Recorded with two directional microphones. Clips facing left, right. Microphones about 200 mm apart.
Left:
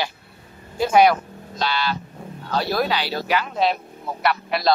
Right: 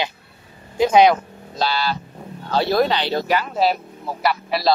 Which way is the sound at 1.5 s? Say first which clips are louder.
Right 2 dB; 35° right (ahead or behind).